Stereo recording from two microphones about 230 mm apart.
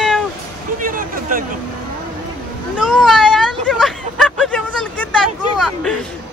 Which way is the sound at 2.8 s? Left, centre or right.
Centre.